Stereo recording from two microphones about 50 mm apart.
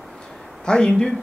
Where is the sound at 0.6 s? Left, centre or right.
Centre.